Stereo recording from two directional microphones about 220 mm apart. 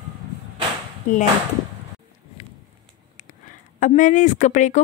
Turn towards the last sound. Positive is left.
turn(degrees=35)  # may be behind; listen again after turning